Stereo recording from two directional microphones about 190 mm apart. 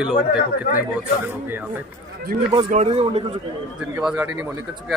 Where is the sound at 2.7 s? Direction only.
35° right (ahead or behind).